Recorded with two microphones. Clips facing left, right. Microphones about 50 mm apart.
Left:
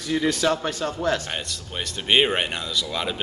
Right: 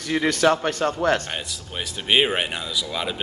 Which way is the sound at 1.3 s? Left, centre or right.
Centre.